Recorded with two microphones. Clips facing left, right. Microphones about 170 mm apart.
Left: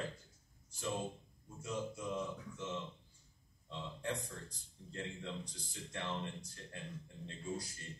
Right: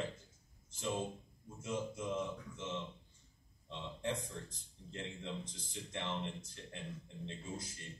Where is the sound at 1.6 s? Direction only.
20° right (ahead or behind).